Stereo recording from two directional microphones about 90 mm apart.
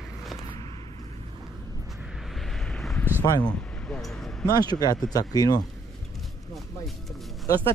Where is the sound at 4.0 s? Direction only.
5° left (ahead or behind).